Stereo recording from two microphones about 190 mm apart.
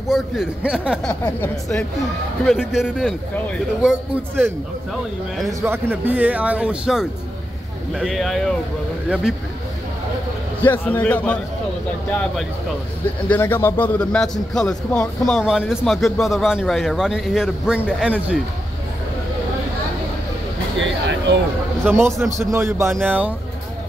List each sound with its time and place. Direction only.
0.1 s a man's voice: 5° right (ahead or behind)
1.0 s speech: 10° left (ahead or behind)
2.4 s a man's voice: centre (ahead or behind)
10.6 s speech: 10° left (ahead or behind)
13.3 s a man's voice: 10° left (ahead or behind); by 18.1 s 5° right (ahead or behind)
20.8 s a sound: 70° right (ahead or behind)
21.8 s speech: 15° right (ahead or behind)